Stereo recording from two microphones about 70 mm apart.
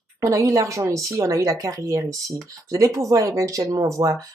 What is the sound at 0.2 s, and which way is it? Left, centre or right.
Speech, right.